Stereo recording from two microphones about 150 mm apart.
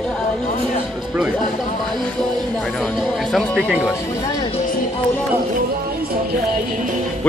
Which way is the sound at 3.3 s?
Centre (ahead or behind).